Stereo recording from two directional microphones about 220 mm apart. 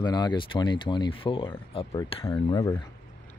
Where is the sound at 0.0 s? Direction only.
20° left (ahead or behind).